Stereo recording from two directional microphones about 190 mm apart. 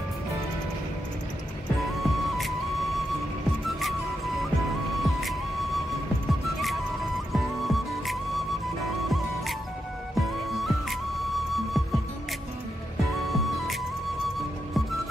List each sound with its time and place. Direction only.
2.0 s music: centre (ahead or behind)
4.9 s music: centre (ahead or behind)
13.3 s music: centre (ahead or behind)